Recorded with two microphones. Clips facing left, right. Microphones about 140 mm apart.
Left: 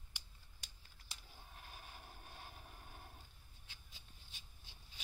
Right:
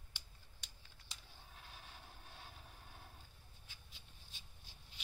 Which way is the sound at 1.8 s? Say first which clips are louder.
Left 2 dB; 45° left (ahead or behind).